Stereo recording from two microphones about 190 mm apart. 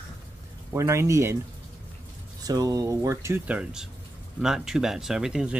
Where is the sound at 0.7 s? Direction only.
15° right (ahead or behind).